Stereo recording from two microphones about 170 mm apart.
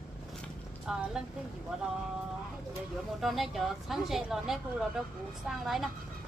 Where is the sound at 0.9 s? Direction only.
5° right (ahead or behind).